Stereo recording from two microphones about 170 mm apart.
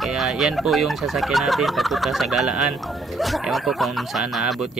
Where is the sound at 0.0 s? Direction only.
Centre (ahead or behind).